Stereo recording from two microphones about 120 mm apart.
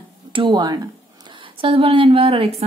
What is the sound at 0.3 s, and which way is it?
Speech, 40° right (ahead or behind).